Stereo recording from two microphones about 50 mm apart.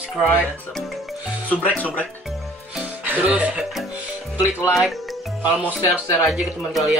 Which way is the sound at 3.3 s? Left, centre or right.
Right.